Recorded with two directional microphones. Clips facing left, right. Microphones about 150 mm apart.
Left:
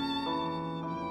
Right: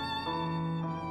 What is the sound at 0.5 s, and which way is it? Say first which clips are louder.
Music: right 1 dB; 5° left (ahead or behind).